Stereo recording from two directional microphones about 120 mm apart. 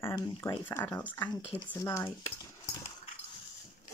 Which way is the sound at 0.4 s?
20° left (ahead or behind).